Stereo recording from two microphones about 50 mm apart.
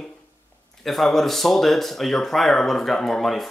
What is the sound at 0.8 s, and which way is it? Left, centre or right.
Speech, centre.